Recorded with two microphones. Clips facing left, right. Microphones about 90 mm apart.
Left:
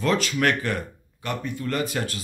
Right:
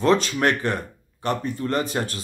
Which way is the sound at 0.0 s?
30° right (ahead or behind).